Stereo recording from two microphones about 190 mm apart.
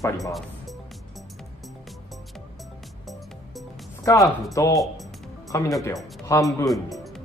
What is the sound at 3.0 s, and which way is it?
Music, centre (ahead or behind).